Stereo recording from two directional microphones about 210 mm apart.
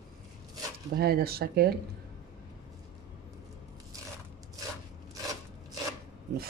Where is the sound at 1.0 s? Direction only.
45° right (ahead or behind).